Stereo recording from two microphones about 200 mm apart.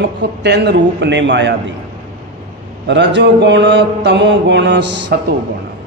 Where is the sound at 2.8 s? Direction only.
60° right (ahead or behind).